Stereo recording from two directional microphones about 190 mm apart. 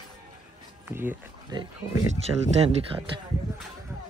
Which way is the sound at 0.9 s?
10° right (ahead or behind).